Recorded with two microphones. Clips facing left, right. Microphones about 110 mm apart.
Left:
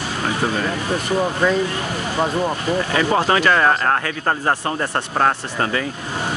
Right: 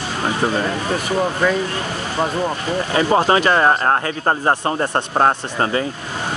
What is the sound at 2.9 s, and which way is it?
Speech, 25° right (ahead or behind).